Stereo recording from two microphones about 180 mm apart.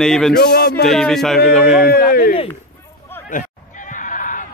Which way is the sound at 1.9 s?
55° left (ahead or behind).